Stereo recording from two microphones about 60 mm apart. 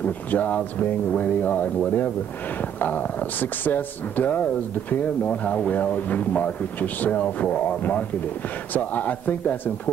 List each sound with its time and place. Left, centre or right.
0.0 s speech: left